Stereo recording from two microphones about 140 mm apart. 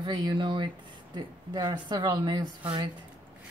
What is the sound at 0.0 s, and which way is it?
Speech, 35° right (ahead or behind).